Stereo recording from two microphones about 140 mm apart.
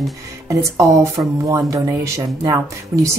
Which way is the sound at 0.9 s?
25° right (ahead or behind).